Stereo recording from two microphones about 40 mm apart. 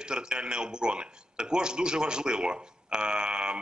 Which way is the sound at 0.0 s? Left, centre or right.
Right.